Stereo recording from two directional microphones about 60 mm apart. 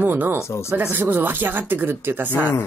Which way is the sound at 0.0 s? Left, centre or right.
Right.